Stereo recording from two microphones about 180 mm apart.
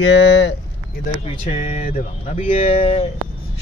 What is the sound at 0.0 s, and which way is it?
Speech, 80° left.